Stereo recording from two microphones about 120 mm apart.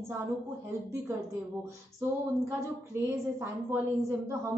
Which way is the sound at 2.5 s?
25° right (ahead or behind).